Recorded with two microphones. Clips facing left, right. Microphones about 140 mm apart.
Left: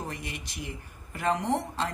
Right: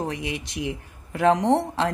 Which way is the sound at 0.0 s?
75° right (ahead or behind).